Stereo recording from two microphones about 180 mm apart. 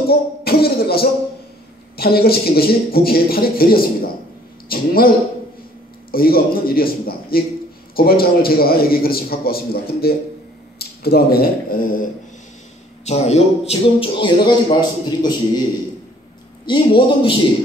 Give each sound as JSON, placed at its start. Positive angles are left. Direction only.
{"t": 0.1, "sound": "a sound", "side_deg": 60}
{"t": 2.0, "sound": "a man's voice", "side_deg": 60}
{"t": 6.1, "sound": "a man's voice", "side_deg": 55}
{"t": 13.0, "sound": "speech", "side_deg": 35}
{"t": 16.6, "sound": "speech", "side_deg": 25}